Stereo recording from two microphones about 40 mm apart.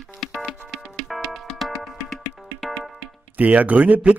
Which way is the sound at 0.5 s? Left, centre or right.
Centre.